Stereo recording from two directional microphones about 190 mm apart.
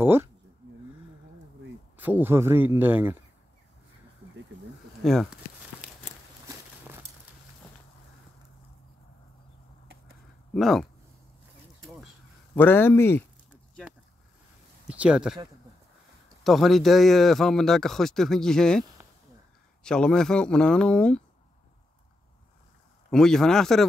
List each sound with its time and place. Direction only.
0.0 s a man's voice: 10° right (ahead or behind)
2.0 s a man's voice: 10° right (ahead or behind)
5.0 s a sound: centre (ahead or behind)
10.5 s speech: centre (ahead or behind)
12.5 s speech: 10° left (ahead or behind)
14.9 s speech: 5° right (ahead or behind)
16.4 s speech: centre (ahead or behind)
23.0 s speech: 5° left (ahead or behind)